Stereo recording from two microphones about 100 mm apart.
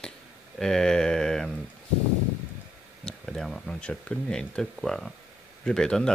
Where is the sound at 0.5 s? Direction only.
5° left (ahead or behind).